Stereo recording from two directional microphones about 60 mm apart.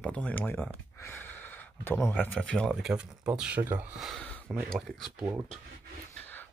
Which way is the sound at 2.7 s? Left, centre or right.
Centre.